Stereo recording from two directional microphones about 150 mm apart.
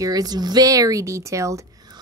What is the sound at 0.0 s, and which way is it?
Speech, 25° right (ahead or behind).